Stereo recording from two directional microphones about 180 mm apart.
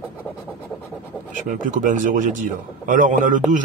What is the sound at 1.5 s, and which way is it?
A man's voice, 45° right (ahead or behind).